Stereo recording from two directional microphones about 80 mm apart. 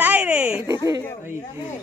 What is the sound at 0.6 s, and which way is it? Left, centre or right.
Speech, right.